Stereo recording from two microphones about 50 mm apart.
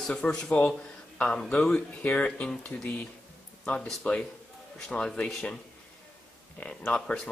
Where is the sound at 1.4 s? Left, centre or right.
Centre.